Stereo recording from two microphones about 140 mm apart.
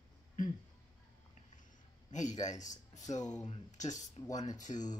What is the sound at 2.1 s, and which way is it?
Speech, 60° left (ahead or behind).